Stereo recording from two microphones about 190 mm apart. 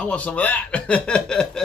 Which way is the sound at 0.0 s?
5° left (ahead or behind).